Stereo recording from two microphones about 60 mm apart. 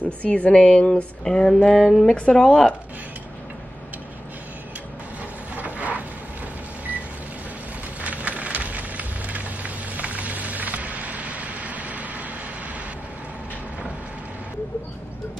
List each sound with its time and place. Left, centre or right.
0.2 s speech: left; by 2.1 s centre
2.1 s speech: centre
5.6 s a sound: right
8.0 s rain on surface: right